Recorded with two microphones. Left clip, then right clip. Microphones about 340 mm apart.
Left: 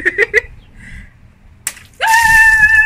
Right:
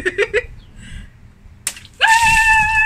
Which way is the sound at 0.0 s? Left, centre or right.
Centre.